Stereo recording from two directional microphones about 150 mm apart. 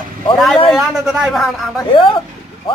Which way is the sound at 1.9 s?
35° left (ahead or behind).